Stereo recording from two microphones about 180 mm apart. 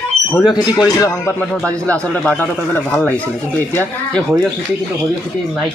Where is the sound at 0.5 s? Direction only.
20° left (ahead or behind).